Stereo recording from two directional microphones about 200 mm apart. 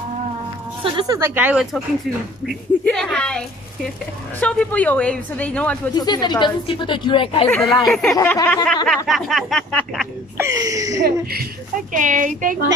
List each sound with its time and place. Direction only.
0.8 s a woman's voice: 20° right (ahead or behind); by 5.8 s 5° left (ahead or behind)
5.9 s speech: 20° left (ahead or behind)
7.4 s a woman's voice: 10° left (ahead or behind)
8.8 s speech: centre (ahead or behind)
10.3 s speech: 15° right (ahead or behind)
11.9 s speech: 40° right (ahead or behind)